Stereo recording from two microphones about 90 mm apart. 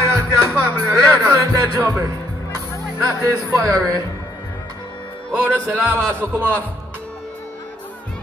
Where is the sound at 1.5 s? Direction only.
40° right (ahead or behind).